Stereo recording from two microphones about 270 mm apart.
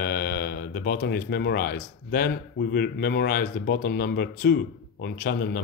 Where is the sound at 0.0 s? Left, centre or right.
Left.